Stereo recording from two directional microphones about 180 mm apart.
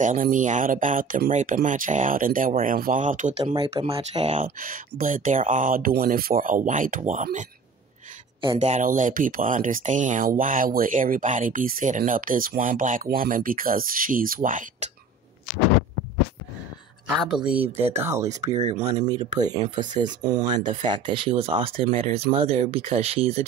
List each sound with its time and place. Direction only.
0.0 s speech: 45° right (ahead or behind)
3.5 s speech: 30° right (ahead or behind)
8.5 s speech: 45° right (ahead or behind)
17.1 s speech: 5° right (ahead or behind)
18.6 s speech: 40° right (ahead or behind)
19.0 s speech: 20° right (ahead or behind)